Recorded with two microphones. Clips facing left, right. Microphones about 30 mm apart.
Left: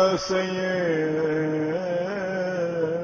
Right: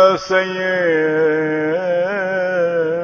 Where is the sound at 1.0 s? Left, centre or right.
Centre.